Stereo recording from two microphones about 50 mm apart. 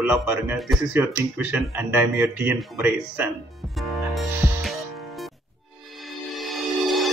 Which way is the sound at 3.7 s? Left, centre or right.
Centre.